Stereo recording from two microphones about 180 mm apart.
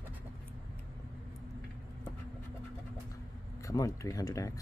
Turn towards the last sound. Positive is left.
turn(degrees=20)  # may be behind; listen again after turning